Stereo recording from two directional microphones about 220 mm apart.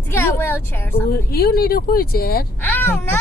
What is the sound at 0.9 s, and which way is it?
Speech, 45° left (ahead or behind).